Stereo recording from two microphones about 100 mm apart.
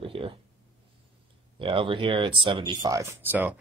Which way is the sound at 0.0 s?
65° right (ahead or behind).